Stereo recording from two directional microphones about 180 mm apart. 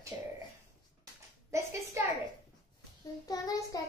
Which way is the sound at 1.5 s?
15° right (ahead or behind).